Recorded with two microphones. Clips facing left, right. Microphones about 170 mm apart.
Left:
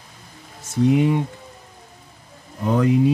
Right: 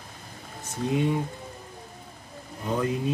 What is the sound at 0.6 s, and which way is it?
Speech, 85° left.